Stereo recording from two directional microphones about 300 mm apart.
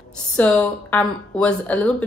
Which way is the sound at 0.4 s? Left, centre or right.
Centre.